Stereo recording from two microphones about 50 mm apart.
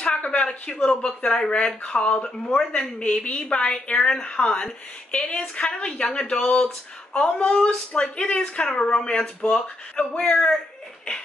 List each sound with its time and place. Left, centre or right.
0.0 s a woman's voice: left